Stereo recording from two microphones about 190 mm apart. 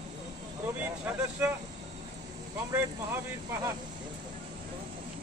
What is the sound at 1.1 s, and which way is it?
Speech, 10° right (ahead or behind).